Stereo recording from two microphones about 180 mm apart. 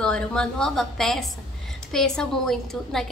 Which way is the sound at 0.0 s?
5° left (ahead or behind).